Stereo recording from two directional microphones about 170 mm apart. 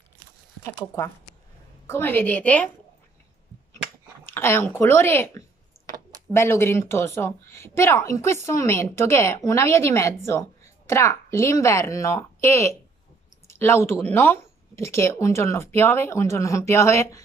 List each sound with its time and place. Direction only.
1.9 s a woman's voice: 15° left (ahead or behind)
4.3 s a woman's voice: 15° left (ahead or behind)